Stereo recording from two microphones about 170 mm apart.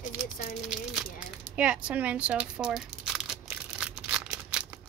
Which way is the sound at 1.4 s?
5° right (ahead or behind).